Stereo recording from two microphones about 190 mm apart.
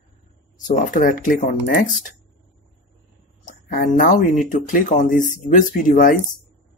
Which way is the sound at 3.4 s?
45° left (ahead or behind).